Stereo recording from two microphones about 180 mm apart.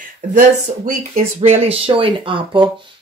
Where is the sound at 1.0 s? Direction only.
35° right (ahead or behind).